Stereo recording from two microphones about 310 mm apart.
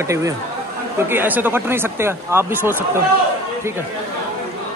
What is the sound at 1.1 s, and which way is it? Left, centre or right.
Speech, centre.